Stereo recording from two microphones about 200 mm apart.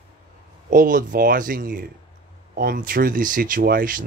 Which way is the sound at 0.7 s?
40° right (ahead or behind).